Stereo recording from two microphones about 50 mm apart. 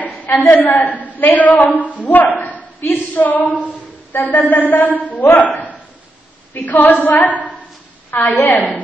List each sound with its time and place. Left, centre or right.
0.3 s a woman's voice: left
6.5 s a woman's voice: left
8.1 s a woman's voice: left